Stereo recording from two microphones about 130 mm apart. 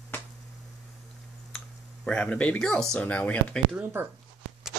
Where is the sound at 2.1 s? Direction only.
10° left (ahead or behind).